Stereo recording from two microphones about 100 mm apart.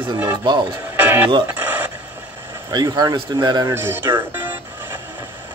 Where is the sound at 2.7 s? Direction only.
45° right (ahead or behind).